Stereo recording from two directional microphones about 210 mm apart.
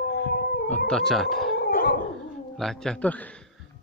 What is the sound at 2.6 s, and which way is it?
Speech, centre (ahead or behind).